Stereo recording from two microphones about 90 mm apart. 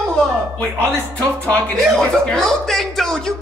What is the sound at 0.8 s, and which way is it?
Speech, 30° right (ahead or behind).